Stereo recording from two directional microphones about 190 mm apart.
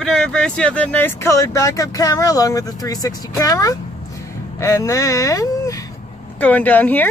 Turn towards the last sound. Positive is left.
turn(degrees=10)  # may be behind; listen again after turning